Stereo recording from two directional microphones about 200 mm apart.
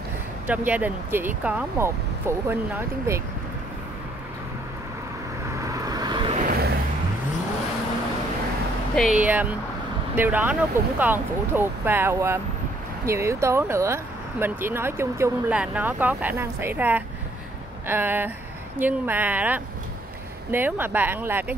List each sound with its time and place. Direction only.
0.5 s speech: 10° right (ahead or behind)
5.6 s vehicle: 15° right (ahead or behind)
6.4 s a sound: 50° right (ahead or behind)
8.9 s speech: centre (ahead or behind)